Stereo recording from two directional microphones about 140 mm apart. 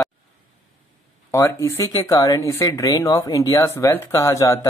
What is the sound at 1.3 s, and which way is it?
Speech, 20° left (ahead or behind).